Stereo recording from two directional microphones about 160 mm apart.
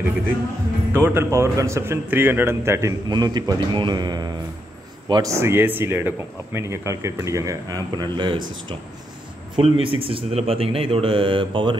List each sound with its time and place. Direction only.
0.9 s a man's voice: 15° right (ahead or behind)
9.6 s speech: 35° right (ahead or behind)